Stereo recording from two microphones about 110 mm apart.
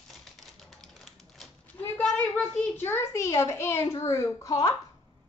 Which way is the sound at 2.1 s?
15° left (ahead or behind).